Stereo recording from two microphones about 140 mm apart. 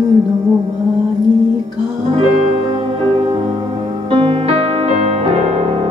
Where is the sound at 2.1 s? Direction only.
45° right (ahead or behind).